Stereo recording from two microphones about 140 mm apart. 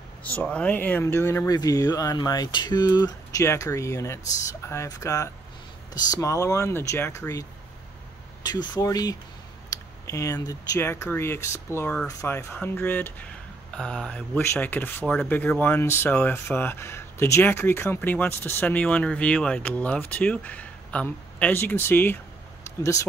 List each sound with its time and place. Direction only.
0.2 s speech: 10° left (ahead or behind)
8.5 s speech: 30° left (ahead or behind)